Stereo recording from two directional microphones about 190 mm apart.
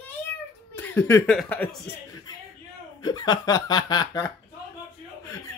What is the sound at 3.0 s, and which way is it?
Speech, 20° left (ahead or behind).